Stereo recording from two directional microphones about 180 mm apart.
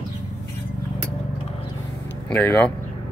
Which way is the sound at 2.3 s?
10° left (ahead or behind).